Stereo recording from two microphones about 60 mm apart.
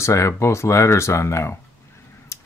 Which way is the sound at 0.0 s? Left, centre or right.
Left.